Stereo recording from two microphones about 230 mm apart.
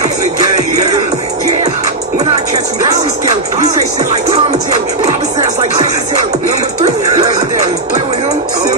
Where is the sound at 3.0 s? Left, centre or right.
Right.